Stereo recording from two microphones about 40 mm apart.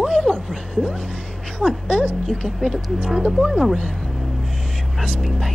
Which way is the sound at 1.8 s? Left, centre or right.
Left.